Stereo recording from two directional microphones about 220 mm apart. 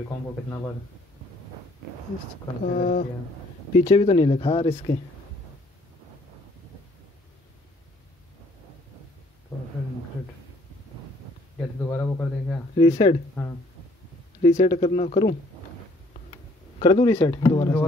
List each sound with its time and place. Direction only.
2.6 s speech: 35° left (ahead or behind)
3.8 s speech: 25° left (ahead or behind)
11.8 s a man's voice: 10° left (ahead or behind)
12.7 s speech: 30° left (ahead or behind)
14.4 s speech: 30° left (ahead or behind)
16.8 s speech: 25° left (ahead or behind)